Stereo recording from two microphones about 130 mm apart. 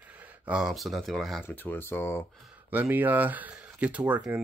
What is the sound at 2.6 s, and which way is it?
Speech, 15° right (ahead or behind).